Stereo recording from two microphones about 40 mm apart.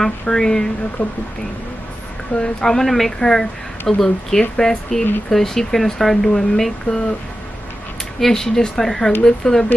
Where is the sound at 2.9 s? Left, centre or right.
Centre.